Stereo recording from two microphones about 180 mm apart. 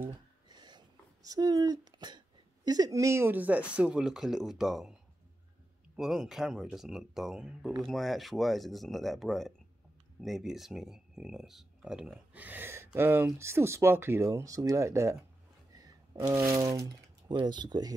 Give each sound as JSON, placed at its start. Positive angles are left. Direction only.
{"t": 0.5, "sound": "speech", "side_deg": -25}
{"t": 5.9, "sound": "speech", "side_deg": -5}